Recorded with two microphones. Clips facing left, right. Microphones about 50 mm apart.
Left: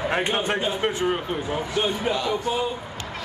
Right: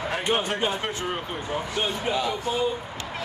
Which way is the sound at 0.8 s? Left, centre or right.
Centre.